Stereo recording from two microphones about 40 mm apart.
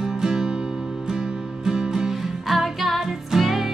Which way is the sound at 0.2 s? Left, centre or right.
Centre.